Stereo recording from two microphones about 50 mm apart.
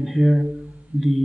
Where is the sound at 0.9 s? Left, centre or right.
Right.